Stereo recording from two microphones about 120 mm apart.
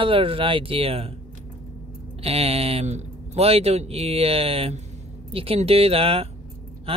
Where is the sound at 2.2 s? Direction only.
55° right (ahead or behind).